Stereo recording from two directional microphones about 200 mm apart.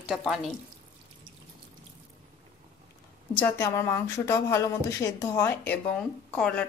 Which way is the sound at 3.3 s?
10° left (ahead or behind).